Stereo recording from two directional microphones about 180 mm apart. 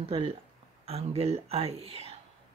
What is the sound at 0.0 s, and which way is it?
Speech, 30° right (ahead or behind).